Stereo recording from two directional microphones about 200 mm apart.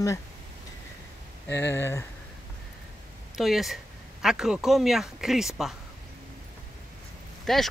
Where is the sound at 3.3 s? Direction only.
Centre (ahead or behind).